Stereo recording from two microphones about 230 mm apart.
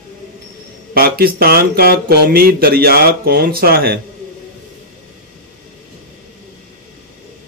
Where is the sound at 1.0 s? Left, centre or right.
Right.